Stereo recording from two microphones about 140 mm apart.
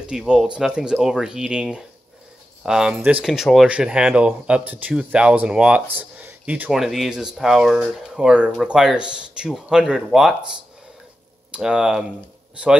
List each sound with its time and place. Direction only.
0.1 s speech: 5° right (ahead or behind)
11.5 s speech: 5° right (ahead or behind)